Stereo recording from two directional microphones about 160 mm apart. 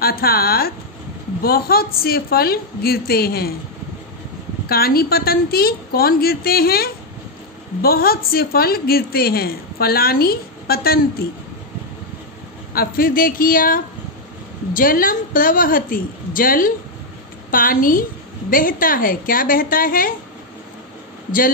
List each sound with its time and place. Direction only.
0.0 s a woman's voice: 70° left (ahead or behind)
4.6 s a woman's voice: 70° left (ahead or behind)
12.7 s a woman's voice: 65° left (ahead or behind)